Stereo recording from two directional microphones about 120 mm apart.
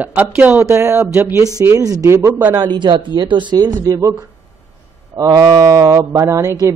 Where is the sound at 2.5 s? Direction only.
35° right (ahead or behind).